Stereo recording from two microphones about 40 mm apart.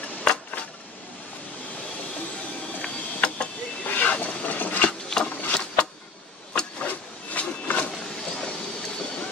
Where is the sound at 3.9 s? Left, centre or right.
Left.